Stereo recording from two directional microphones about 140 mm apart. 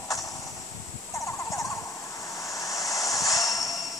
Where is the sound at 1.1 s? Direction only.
20° left (ahead or behind).